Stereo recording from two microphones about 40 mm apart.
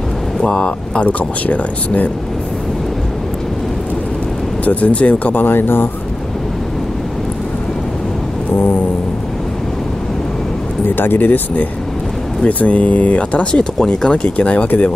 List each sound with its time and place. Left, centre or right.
0.4 s speech: left
1.0 s speech: left
4.6 s speech: left
5.5 s speech: left
11.0 s speech: left
13.5 s speech: left